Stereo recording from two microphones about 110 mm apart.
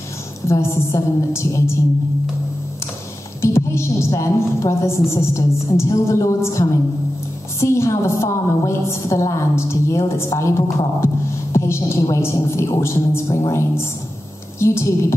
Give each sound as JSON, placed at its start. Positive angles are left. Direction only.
{"t": 0.5, "sound": "a woman's voice", "side_deg": 25}
{"t": 3.3, "sound": "a woman's voice", "side_deg": 25}